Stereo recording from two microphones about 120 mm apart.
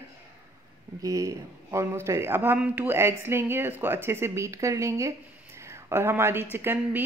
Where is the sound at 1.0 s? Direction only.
25° right (ahead or behind).